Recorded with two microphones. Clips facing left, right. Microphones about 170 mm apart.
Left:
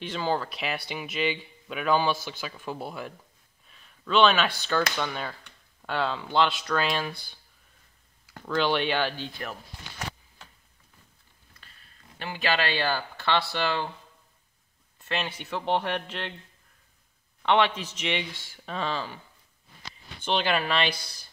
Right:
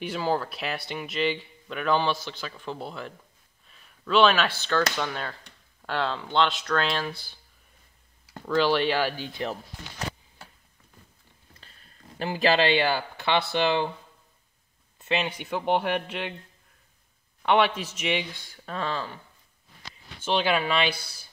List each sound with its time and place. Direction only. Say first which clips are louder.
0.0 s speech: right 1 dB; 5° right (ahead or behind)
3.8 s speech: right 1 dB; 5° right (ahead or behind)
8.5 s speech: right 3 dB; centre (ahead or behind)
12.2 s speech: right 5 dB; 35° right (ahead or behind)
12.6 s speech: right 5 dB; 15° right (ahead or behind)
15.0 s speech: right 4 dB; 20° right (ahead or behind)
17.4 s speech: right 1 dB; 5° right (ahead or behind)
18.8 s speech: even; 10° left (ahead or behind)
20.2 s speech: right 2 dB; 5° right (ahead or behind)